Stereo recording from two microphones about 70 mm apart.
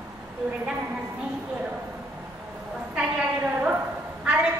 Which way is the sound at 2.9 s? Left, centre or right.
Centre.